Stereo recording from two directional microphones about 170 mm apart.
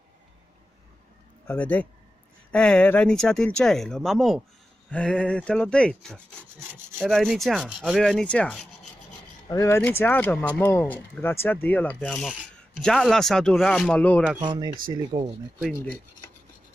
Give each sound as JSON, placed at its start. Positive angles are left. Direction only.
{"t": 1.5, "sound": "speech", "side_deg": 10}
{"t": 6.1, "sound": "rub", "side_deg": -10}
{"t": 7.0, "sound": "speech", "side_deg": 0}
{"t": 9.5, "sound": "speech", "side_deg": 20}
{"t": 14.4, "sound": "speech", "side_deg": -25}